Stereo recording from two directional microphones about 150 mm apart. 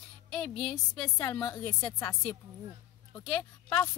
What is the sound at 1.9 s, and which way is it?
Speech, 15° left (ahead or behind).